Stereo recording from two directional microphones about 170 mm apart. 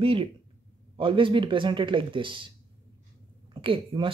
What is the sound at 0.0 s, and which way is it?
Speech, 30° right (ahead or behind).